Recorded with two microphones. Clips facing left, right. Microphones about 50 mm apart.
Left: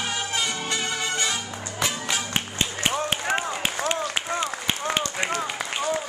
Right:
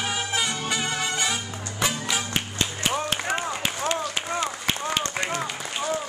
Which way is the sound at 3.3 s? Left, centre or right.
Left.